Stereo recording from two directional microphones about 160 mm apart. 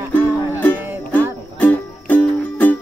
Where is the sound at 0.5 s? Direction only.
10° left (ahead or behind).